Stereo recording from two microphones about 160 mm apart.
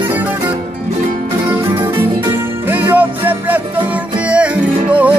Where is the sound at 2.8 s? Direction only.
10° right (ahead or behind).